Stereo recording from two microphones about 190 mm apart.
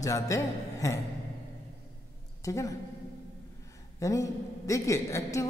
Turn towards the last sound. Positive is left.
turn(degrees=15)  # may be behind; listen again after turning